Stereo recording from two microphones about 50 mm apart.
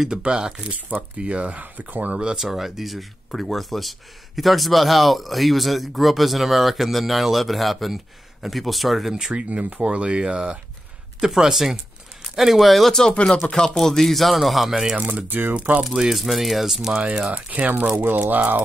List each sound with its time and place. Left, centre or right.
0.1 s speech: centre
2.3 s speech: centre
9.1 s speech: centre
13.1 s speech: left
13.7 s speech: centre
15.0 s speech: right
15.8 s speech: centre
17.1 s speech: right
18.0 s speech: right